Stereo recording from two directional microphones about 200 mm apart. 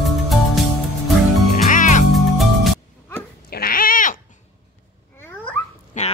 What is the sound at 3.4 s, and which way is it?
Cat, 50° left (ahead or behind).